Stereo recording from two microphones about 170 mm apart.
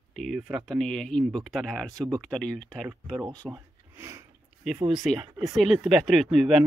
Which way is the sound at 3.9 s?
15° right (ahead or behind).